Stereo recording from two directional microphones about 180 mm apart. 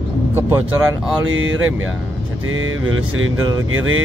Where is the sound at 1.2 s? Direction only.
90° right.